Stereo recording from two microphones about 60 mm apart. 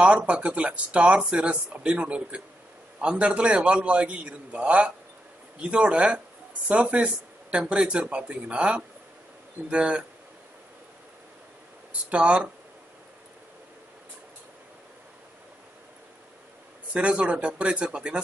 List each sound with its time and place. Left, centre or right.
0.3 s speech: right
12.1 s speech: centre
16.9 s speech: centre